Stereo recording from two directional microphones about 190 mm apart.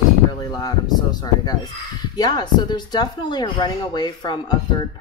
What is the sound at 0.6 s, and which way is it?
Speech, 20° left (ahead or behind).